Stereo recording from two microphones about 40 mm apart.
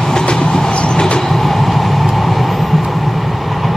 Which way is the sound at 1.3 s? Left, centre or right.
Centre.